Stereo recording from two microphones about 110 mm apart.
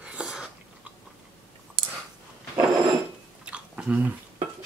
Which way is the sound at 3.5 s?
10° right (ahead or behind).